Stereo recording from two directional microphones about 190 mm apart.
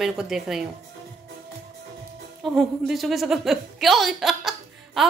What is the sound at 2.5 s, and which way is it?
A woman's voice, centre (ahead or behind).